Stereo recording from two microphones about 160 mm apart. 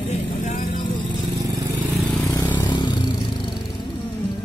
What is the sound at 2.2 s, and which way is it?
Vehicle, 20° left (ahead or behind).